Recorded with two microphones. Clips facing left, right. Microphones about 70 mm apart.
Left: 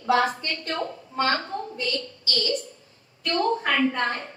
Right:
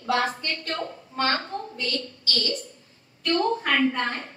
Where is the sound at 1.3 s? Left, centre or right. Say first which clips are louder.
Left 1 dB; centre.